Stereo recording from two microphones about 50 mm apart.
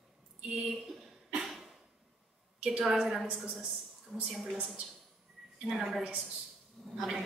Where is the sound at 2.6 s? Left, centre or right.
Centre.